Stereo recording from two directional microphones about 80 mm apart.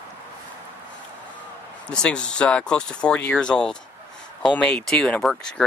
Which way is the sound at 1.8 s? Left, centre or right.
Centre.